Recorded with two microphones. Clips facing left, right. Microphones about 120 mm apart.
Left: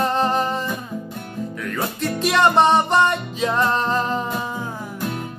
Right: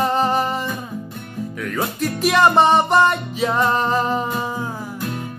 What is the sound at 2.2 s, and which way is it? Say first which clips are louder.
Music: right 1 dB; 5° right (ahead or behind).